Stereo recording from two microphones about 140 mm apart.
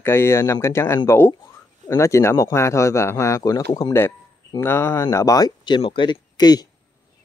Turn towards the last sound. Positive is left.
turn(degrees=30)  # may be behind; listen again after turning